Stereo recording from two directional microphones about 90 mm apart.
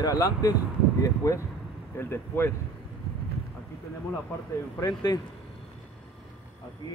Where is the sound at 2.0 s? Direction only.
25° left (ahead or behind).